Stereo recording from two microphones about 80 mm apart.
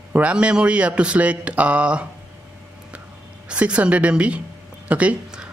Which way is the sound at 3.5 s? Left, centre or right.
Centre.